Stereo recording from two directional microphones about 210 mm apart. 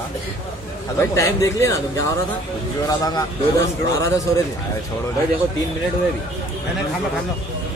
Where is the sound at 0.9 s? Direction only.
15° left (ahead or behind).